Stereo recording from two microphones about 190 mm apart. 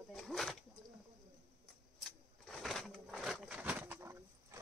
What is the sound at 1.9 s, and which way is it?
Bird, centre (ahead or behind).